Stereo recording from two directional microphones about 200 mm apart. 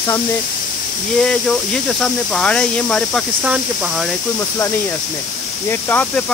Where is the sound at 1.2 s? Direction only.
5° left (ahead or behind).